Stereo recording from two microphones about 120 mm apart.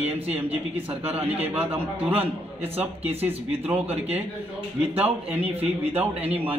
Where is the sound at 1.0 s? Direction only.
55° right (ahead or behind).